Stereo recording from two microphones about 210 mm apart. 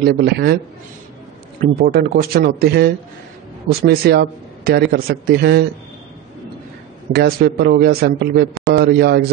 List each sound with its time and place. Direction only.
0.0 s a man's voice: 50° right (ahead or behind)
1.6 s a man's voice: 45° right (ahead or behind)
7.1 s a man's voice: 50° right (ahead or behind)